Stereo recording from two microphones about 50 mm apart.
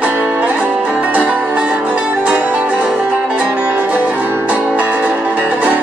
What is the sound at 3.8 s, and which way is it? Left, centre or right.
Music, right.